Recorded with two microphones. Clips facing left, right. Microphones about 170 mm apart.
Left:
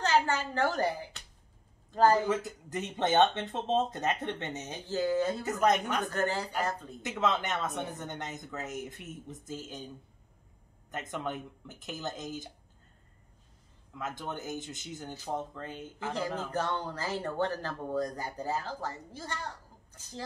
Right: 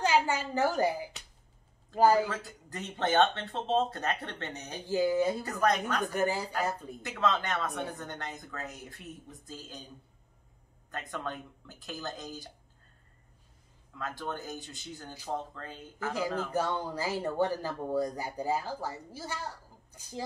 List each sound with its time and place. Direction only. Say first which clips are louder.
0.0 s speech: even; 10° right (ahead or behind)
2.2 s speech: left 6 dB; 20° left (ahead or behind)
4.8 s speech: right 2 dB; 10° right (ahead or behind)
5.4 s speech: left 2 dB; 20° left (ahead or behind)
6.0 s speech: right 1 dB; 10° right (ahead or behind)
7.0 s speech: even; 20° left (ahead or behind)
10.9 s speech: left 2 dB; 20° left (ahead or behind)
13.9 s speech: even; 20° left (ahead or behind)
16.1 s speech: right 2 dB; 10° right (ahead or behind)